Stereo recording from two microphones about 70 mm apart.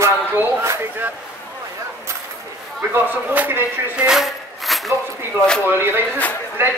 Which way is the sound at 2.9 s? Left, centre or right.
Right.